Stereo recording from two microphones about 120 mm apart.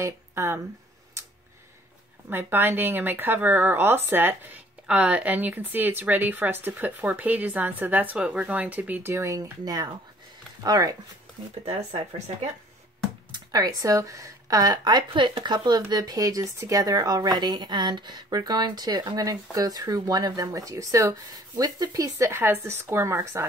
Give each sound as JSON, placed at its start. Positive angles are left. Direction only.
{"t": 0.0, "sound": "speech", "side_deg": -20}
{"t": 2.2, "sound": "speech", "side_deg": -15}
{"t": 11.6, "sound": "speech", "side_deg": -55}
{"t": 13.3, "sound": "speech", "side_deg": -35}